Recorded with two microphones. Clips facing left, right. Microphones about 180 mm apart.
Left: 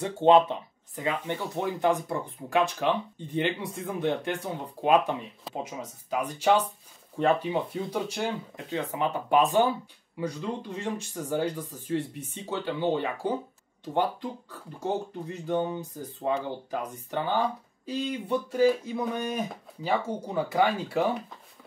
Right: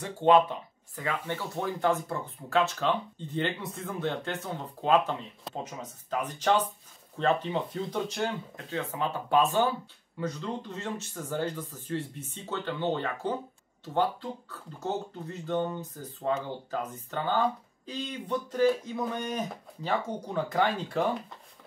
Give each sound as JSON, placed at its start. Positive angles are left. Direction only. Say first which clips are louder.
{"t": 0.0, "sound": "speech", "louder": "left 2 dB", "side_deg": 25}